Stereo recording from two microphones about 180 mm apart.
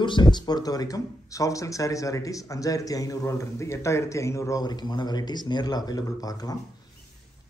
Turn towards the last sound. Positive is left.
turn(degrees=20)  # may be behind; listen again after turning